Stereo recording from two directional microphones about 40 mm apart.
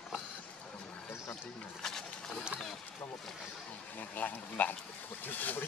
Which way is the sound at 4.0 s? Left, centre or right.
Left.